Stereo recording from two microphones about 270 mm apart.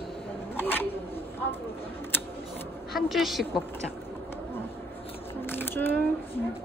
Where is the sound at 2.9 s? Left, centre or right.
Centre.